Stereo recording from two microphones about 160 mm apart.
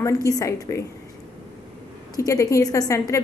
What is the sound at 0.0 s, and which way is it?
Speech, 20° left (ahead or behind).